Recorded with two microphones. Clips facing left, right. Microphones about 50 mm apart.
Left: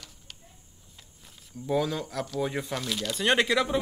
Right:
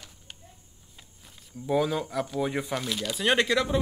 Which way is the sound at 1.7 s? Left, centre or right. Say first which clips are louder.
Right 2 dB; centre.